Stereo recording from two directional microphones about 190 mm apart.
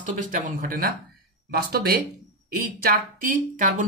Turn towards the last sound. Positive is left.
turn(degrees=-45)  # may be behind; listen again after turning